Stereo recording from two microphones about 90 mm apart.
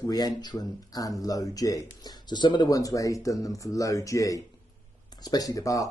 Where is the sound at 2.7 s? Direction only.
40° left (ahead or behind).